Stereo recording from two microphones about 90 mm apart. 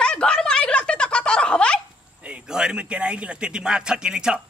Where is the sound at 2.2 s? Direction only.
10° right (ahead or behind).